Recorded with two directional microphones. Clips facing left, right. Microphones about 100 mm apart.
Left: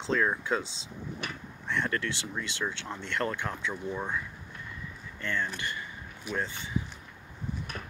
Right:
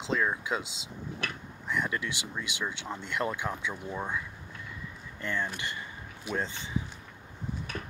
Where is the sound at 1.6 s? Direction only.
10° right (ahead or behind).